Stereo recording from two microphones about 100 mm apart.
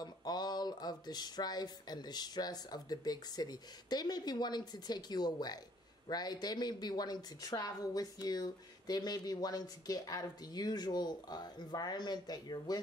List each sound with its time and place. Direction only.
0.0 s a woman's voice: 40° left (ahead or behind)